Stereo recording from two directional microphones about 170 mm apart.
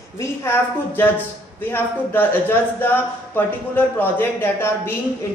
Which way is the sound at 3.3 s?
10° left (ahead or behind).